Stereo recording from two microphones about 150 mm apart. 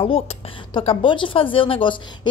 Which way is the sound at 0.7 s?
35° left (ahead or behind).